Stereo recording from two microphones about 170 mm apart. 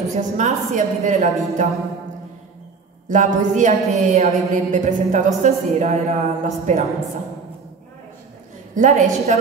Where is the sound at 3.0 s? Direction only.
50° right (ahead or behind).